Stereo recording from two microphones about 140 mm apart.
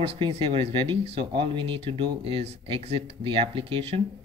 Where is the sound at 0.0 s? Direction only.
45° right (ahead or behind).